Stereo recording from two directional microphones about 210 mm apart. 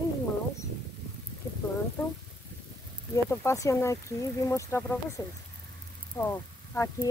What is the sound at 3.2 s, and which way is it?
Speech, 15° left (ahead or behind).